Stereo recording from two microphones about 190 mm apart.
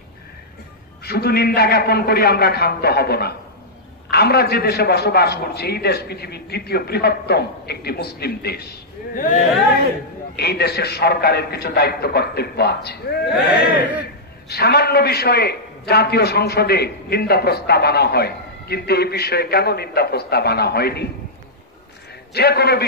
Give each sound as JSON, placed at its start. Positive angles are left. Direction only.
{"t": 1.0, "sound": "a man's voice", "side_deg": 55}
{"t": 9.1, "sound": "speech", "side_deg": 45}
{"t": 10.3, "sound": "a man's voice", "side_deg": 60}
{"t": 22.3, "sound": "a man's voice", "side_deg": 55}